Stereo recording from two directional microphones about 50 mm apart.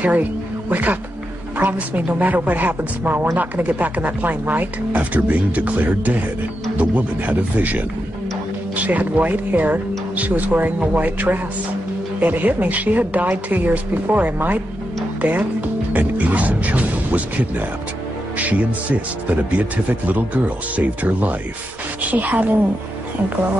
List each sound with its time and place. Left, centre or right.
0.7 s speech: right
15.2 s music: right
18.4 s speech: right